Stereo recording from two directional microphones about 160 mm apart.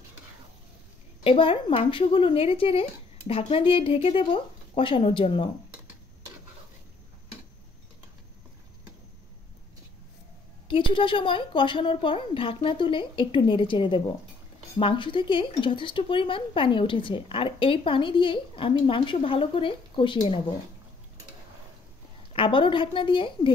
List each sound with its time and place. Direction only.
1.2 s speech: 35° left (ahead or behind)
10.7 s speech: 30° left (ahead or behind)
22.3 s speech: 30° left (ahead or behind)